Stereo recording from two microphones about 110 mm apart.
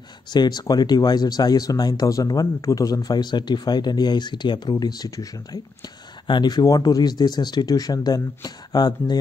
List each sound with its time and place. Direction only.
0.3 s speech: 40° left (ahead or behind)